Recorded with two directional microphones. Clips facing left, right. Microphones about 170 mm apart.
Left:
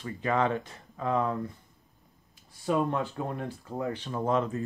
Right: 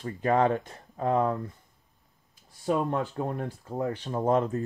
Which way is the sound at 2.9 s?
40° right (ahead or behind).